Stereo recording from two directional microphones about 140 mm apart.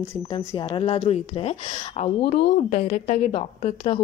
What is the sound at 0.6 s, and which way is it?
A woman's voice, 40° left (ahead or behind).